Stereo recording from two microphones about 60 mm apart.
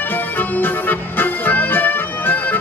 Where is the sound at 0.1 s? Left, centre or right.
Left.